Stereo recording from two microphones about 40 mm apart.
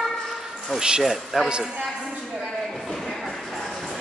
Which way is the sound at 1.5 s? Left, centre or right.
Centre.